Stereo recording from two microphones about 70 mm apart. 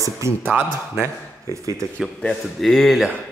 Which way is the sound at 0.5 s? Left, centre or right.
Right.